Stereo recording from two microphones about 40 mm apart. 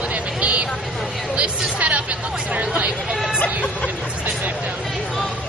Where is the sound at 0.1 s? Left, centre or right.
Right.